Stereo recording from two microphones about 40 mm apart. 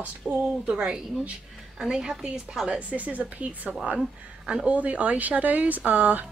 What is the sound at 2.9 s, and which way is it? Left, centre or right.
Speech, right.